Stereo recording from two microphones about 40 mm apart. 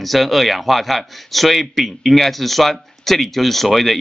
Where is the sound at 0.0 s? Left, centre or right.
Centre.